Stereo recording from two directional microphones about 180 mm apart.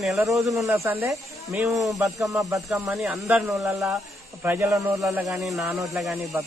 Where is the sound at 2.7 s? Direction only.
Centre (ahead or behind).